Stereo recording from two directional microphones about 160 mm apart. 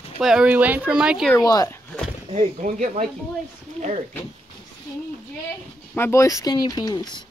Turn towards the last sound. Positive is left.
turn(degrees=25)  # may be behind; listen again after turning